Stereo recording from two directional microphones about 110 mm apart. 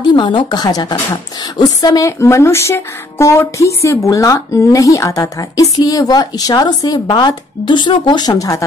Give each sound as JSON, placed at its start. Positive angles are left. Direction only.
{"t": 0.0, "sound": "a woman's voice", "side_deg": 45}